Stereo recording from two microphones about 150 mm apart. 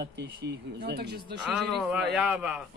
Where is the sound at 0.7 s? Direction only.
90° right.